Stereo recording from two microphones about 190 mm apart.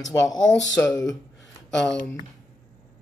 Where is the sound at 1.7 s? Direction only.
5° left (ahead or behind).